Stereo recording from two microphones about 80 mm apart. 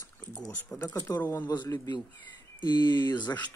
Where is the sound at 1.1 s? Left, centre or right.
Left.